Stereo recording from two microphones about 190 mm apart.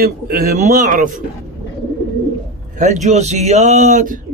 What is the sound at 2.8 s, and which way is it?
A man's voice, 40° right (ahead or behind).